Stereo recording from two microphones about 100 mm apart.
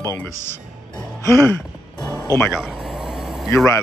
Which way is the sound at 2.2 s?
25° left (ahead or behind).